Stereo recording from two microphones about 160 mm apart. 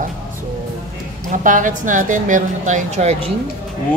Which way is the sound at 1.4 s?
55° right (ahead or behind).